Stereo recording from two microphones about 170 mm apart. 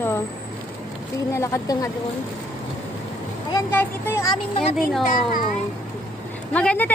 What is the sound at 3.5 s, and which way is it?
Speech, 15° left (ahead or behind).